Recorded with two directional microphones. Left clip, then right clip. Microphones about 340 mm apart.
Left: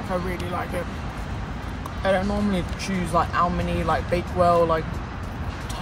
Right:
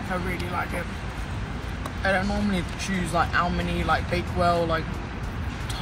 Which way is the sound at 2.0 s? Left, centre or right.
Centre.